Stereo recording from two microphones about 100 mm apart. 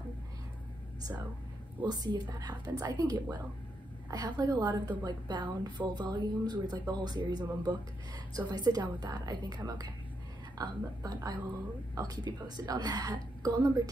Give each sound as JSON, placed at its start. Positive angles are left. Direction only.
{"t": 1.9, "sound": "a woman's voice", "side_deg": -40}